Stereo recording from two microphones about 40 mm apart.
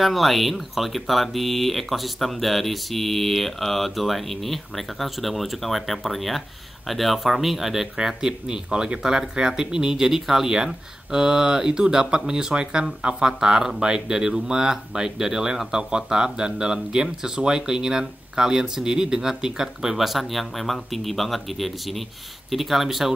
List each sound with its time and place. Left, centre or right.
0.0 s speech: centre
8.2 s speech: centre